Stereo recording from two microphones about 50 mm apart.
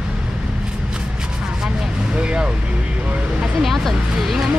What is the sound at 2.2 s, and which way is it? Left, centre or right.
Speech, right.